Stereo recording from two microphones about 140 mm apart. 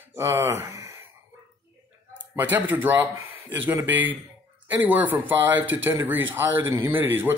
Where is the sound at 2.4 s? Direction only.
15° right (ahead or behind).